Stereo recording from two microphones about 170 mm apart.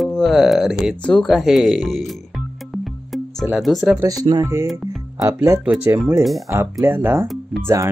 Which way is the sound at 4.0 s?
20° right (ahead or behind).